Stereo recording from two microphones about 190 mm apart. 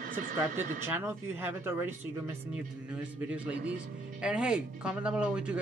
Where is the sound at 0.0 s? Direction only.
45° right (ahead or behind).